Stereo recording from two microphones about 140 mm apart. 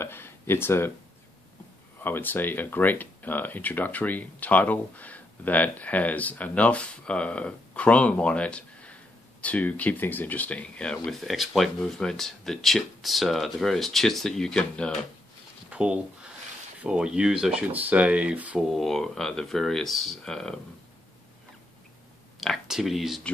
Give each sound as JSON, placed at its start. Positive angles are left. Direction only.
{"t": 0.0, "sound": "a sound", "side_deg": 15}
{"t": 2.0, "sound": "speech", "side_deg": 15}
{"t": 15.7, "sound": "speech", "side_deg": -5}
{"t": 22.4, "sound": "speech", "side_deg": 0}